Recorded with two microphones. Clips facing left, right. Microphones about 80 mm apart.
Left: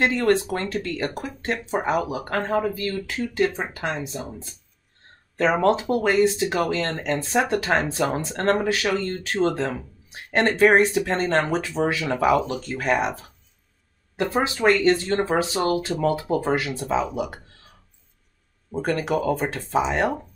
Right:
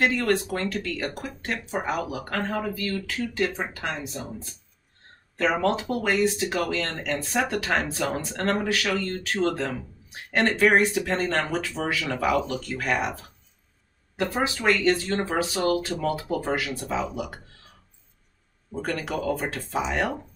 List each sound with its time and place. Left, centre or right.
0.0 s speech: left
5.6 s speech: left
18.8 s speech: left